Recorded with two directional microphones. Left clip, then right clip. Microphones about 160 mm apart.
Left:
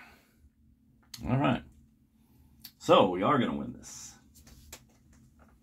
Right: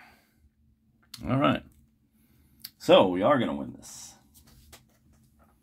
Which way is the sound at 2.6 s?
35° right (ahead or behind).